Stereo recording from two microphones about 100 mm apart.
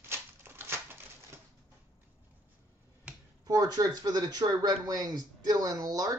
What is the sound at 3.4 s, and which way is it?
Speech, 40° right (ahead or behind).